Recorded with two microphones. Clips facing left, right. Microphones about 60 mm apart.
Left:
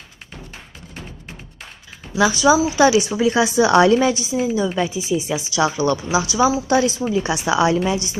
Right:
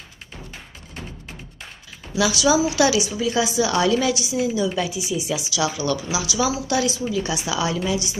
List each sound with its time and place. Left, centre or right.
2.1 s a woman's voice: left
3.2 s speech: left
3.9 s speech: left
7.7 s speech: left